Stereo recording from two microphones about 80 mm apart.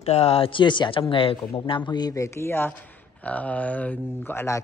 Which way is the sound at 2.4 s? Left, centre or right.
Left.